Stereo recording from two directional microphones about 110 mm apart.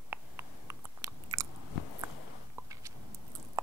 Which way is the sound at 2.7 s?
30° right (ahead or behind).